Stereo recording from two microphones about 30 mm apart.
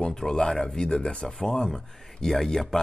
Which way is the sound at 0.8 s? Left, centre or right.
Left.